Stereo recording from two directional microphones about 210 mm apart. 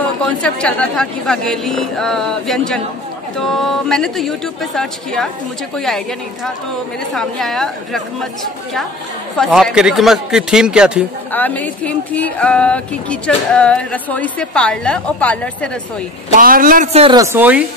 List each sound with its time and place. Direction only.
0.2 s speech: 5° left (ahead or behind)
9.4 s speech: centre (ahead or behind)
11.3 s speech: 10° left (ahead or behind)
16.3 s a man's voice: 40° right (ahead or behind)
17.2 s a woman's voice: 10° right (ahead or behind)